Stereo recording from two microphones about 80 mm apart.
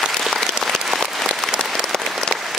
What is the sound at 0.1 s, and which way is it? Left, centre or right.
Applause, centre.